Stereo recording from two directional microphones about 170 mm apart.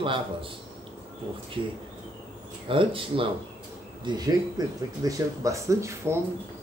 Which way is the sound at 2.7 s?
30° right (ahead or behind).